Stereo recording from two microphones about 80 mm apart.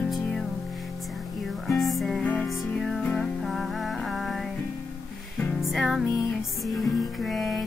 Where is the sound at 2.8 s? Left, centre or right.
Centre.